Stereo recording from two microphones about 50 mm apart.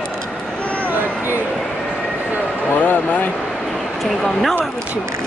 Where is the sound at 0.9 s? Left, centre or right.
Right.